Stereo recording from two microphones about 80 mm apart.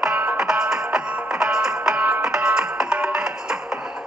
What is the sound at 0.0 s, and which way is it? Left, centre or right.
Music, right.